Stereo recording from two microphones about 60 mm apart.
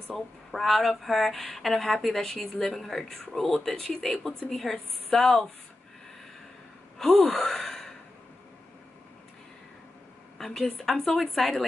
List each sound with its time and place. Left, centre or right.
0.1 s speech: centre
7.0 s gasp: centre
7.2 s gasp: centre
7.5 s a sound: centre
10.3 s speech: centre